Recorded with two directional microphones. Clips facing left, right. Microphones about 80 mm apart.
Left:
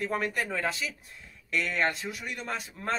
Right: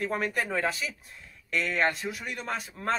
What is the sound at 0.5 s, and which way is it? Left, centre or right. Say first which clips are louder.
Speech: right 2 dB; right.